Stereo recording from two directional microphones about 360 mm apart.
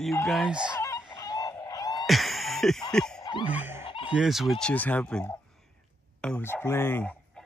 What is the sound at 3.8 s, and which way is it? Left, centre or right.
Fowl, centre.